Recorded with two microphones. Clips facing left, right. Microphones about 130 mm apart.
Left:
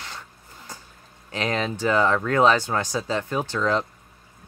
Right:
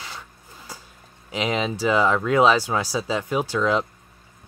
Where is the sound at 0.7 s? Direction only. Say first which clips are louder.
Right 1 dB; 10° right (ahead or behind).